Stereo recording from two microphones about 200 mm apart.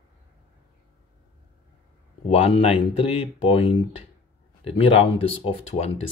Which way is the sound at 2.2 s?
30° left (ahead or behind).